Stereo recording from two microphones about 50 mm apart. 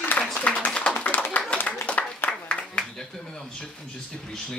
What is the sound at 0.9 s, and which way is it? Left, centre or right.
Clapping, left.